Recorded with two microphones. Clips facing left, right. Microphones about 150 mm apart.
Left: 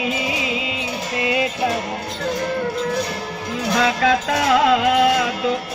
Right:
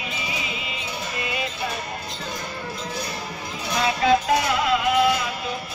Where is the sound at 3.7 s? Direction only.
90° left.